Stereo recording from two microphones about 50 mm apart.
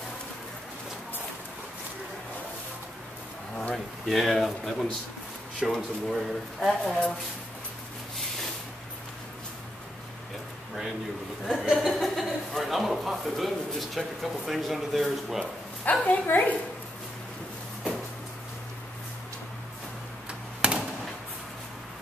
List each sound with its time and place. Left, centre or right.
3.7 s speech: centre
11.6 s speech: centre
15.8 s speech: left
20.2 s a sound: right